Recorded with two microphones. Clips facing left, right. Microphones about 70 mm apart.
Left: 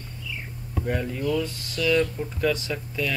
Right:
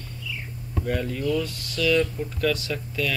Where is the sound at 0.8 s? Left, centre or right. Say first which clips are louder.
Even; centre.